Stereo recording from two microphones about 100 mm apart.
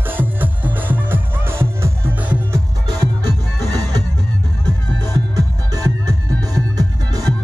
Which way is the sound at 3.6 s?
35° right (ahead or behind).